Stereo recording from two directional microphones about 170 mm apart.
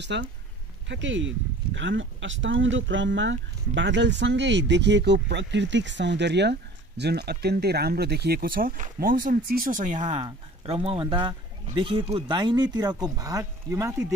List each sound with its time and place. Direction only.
0.0 s speech: 90° right; by 10.2 s 45° right (ahead or behind)
10.2 s speech: 35° right (ahead or behind); by 14.0 s 20° right (ahead or behind)